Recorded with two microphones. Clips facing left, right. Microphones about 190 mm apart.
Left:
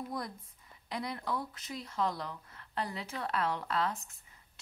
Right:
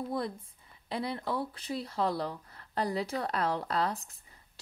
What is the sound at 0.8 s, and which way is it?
Speech, 30° right (ahead or behind).